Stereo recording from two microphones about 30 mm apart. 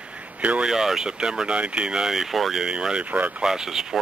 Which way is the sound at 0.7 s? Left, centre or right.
Centre.